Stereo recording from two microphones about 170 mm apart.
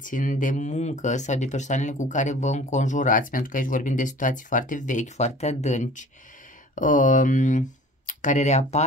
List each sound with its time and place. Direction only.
0.0 s speech: 50° left (ahead or behind)